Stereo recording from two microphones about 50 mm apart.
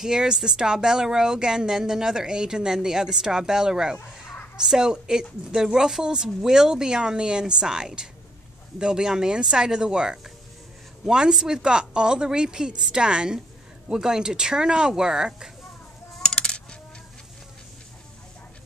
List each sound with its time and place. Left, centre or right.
0.0 s speech: centre
16.3 s coin: centre